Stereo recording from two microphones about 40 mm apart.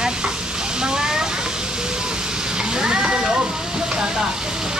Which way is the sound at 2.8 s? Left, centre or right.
Centre.